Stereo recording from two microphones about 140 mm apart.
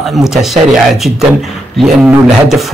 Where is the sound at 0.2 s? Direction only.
Centre (ahead or behind).